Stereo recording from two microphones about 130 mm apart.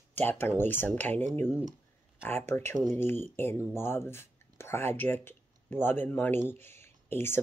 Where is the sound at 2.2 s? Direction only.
15° left (ahead or behind).